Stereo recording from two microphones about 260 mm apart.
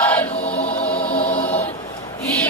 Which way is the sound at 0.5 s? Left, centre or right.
Left.